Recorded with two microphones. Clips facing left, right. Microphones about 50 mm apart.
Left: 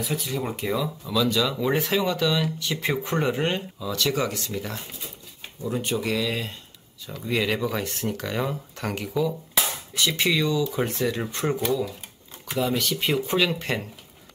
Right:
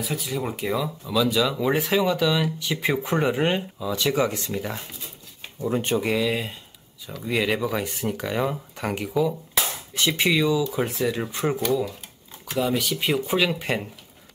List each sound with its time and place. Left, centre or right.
0.0 s speech: centre; by 4.6 s right
4.6 s speech: centre
5.6 s speech: right
5.9 s speech: centre
9.9 s speech: right